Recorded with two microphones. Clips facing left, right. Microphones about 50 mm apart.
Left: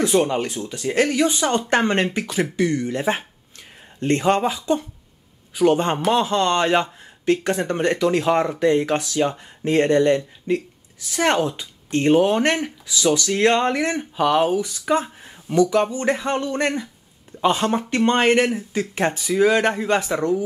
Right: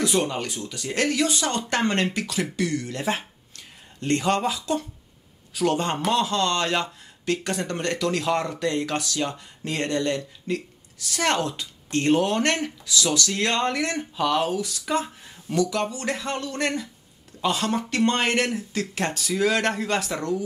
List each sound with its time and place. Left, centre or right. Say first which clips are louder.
0.1 s a man's voice: left 6 dB; centre